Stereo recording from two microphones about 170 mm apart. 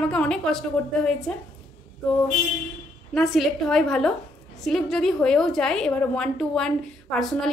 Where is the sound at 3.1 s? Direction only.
Centre (ahead or behind).